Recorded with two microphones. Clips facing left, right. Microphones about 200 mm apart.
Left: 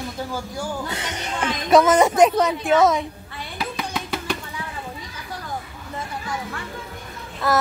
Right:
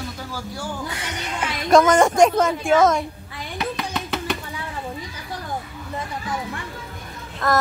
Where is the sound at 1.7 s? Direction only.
5° left (ahead or behind).